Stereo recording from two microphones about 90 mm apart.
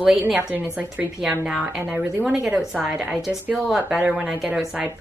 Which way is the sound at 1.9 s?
15° right (ahead or behind).